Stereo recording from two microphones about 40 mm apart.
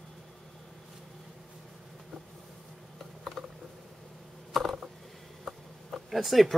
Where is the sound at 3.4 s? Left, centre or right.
Centre.